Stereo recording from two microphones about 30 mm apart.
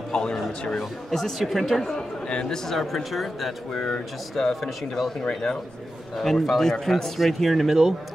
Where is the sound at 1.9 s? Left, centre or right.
Left.